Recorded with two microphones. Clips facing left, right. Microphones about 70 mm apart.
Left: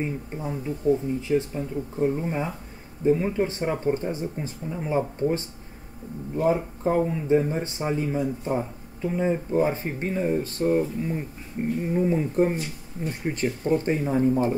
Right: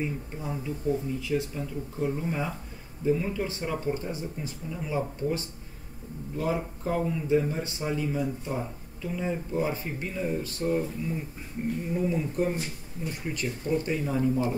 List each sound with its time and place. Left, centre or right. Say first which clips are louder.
0.7 s speech: left 6 dB; left